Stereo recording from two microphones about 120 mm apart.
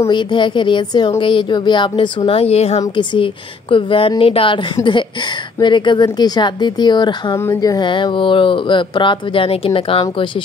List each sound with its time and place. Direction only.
0.1 s a woman's voice: 40° left (ahead or behind); by 2.8 s 60° left (ahead or behind)
2.8 s a woman's voice: 40° left (ahead or behind)
5.6 s a woman's voice: 40° left (ahead or behind)
7.3 s speech: 25° left (ahead or behind); by 10.2 s 50° left (ahead or behind)